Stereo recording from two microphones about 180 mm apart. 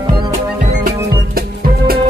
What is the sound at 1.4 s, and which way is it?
Music, 55° right (ahead or behind).